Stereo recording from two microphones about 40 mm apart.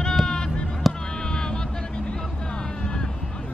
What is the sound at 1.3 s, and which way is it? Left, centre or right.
Vehicle, centre.